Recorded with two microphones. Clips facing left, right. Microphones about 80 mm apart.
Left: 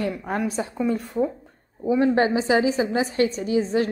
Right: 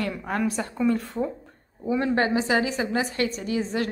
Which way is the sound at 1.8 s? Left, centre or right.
Centre.